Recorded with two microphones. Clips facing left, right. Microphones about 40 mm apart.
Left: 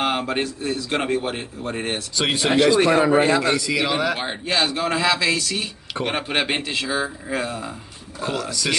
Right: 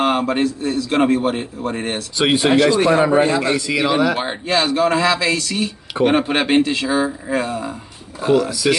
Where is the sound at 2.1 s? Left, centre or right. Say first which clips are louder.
Right 6 dB; centre.